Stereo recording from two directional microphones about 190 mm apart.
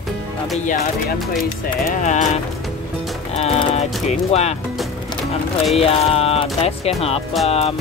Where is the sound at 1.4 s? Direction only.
45° left (ahead or behind).